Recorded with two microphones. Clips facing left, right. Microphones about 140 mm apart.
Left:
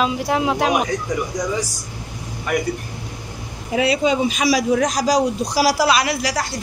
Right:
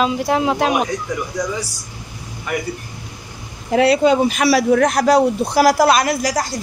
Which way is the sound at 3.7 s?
70° right (ahead or behind).